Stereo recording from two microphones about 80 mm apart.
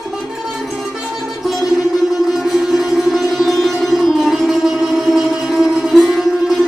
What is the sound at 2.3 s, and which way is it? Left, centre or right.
Music, centre.